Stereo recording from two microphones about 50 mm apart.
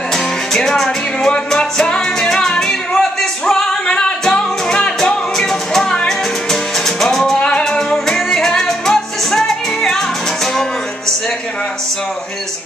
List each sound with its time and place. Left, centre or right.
0.1 s music: centre